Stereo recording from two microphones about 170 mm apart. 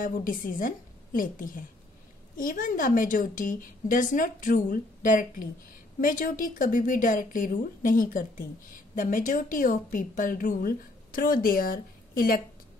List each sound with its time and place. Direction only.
0.0 s a woman's voice: 55° left (ahead or behind)